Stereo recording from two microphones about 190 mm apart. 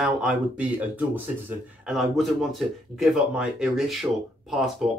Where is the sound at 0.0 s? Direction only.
5° right (ahead or behind).